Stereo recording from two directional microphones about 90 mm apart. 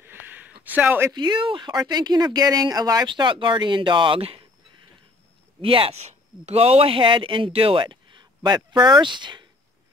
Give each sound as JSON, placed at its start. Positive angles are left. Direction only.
{"t": 0.0, "sound": "a sound", "side_deg": -20}
{"t": 0.7, "sound": "speech", "side_deg": -20}
{"t": 1.1, "sound": "speech", "side_deg": -60}
{"t": 3.1, "sound": "speech", "side_deg": -65}
{"t": 5.6, "sound": "speech", "side_deg": -90}